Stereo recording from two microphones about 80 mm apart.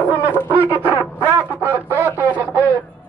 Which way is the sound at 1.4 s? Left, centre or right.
Centre.